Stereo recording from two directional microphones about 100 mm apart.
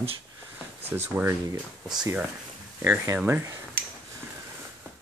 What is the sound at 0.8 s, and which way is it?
Speech, 20° right (ahead or behind).